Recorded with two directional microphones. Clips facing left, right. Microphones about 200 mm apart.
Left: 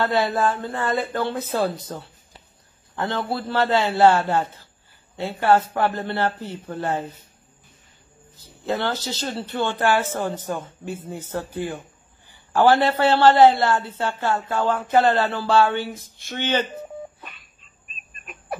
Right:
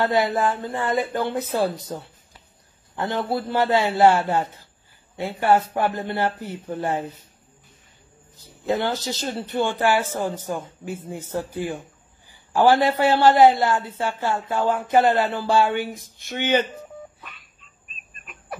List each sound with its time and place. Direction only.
0.0 s a woman's voice: 15° right (ahead or behind)
3.0 s a woman's voice: 20° right (ahead or behind)
8.4 s a woman's voice: 15° right (ahead or behind)